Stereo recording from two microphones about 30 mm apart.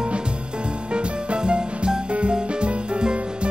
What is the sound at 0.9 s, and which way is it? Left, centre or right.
Music, right.